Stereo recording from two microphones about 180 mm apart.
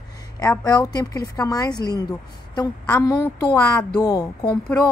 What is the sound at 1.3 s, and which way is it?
A woman's voice, 20° left (ahead or behind).